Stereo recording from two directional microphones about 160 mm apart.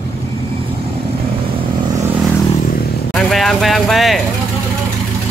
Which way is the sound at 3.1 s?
Centre (ahead or behind).